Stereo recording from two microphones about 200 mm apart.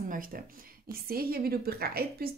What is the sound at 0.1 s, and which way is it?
A woman's voice, 45° right (ahead or behind).